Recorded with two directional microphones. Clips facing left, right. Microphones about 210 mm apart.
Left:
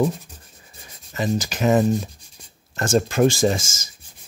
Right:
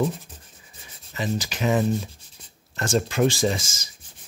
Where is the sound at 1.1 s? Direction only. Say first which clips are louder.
Left 4 dB; 45° left (ahead or behind).